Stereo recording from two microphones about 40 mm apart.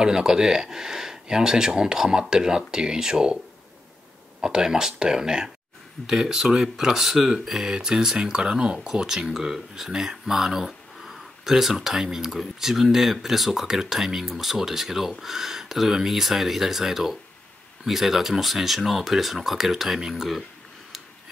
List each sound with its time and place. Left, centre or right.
0.0 s speech: centre
4.4 s speech: centre